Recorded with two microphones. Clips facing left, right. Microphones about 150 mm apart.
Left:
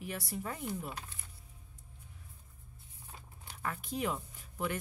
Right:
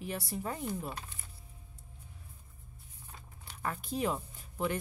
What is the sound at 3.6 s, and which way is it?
Speech, 30° right (ahead or behind).